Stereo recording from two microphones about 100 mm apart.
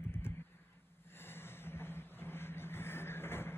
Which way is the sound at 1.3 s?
25° left (ahead or behind).